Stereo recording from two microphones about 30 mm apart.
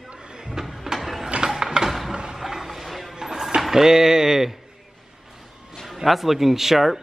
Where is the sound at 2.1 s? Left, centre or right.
Right.